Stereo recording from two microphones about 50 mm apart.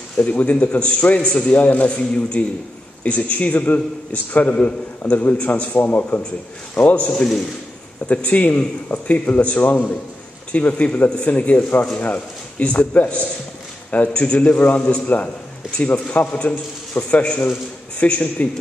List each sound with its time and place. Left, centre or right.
0.2 s a man's voice: left
1.5 s a man's voice: left
5.8 s a man's voice: left
6.7 s a man's voice: left
8.1 s a man's voice: left
14.8 s a man's voice: centre
15.9 s a man's voice: left